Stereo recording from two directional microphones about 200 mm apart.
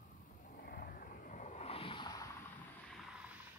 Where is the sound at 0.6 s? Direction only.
45° left (ahead or behind); by 2.3 s 20° left (ahead or behind).